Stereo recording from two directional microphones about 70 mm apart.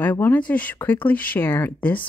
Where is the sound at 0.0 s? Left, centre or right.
Left.